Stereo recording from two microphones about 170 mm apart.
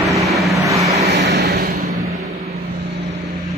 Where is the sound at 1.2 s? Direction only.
80° right; by 1.9 s 60° right (ahead or behind).